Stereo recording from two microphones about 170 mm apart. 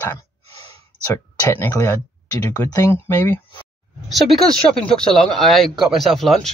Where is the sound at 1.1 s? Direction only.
10° left (ahead or behind).